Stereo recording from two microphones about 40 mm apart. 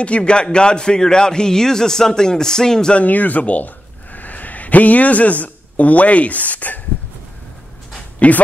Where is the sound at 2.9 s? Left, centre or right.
Left.